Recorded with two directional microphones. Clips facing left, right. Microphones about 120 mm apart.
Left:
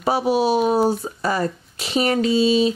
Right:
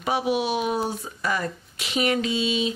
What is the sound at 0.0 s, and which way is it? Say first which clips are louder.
Speech: left 5 dB; 35° left (ahead or behind).